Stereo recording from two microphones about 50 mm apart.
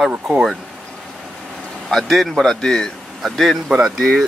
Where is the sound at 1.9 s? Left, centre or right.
Centre.